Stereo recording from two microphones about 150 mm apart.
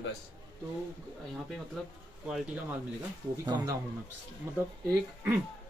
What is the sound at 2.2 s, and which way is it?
Speech, 5° right (ahead or behind).